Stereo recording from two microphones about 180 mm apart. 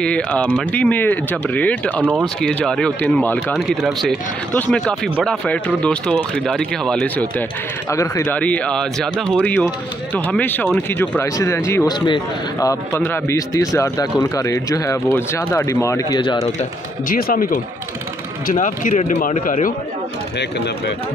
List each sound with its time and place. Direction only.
0.0 s speech: 5° left (ahead or behind)
7.9 s speech: 15° left (ahead or behind)
12.9 s speech: 10° left (ahead or behind); by 16.4 s 25° left (ahead or behind)
17.1 s a man's voice: 50° left (ahead or behind)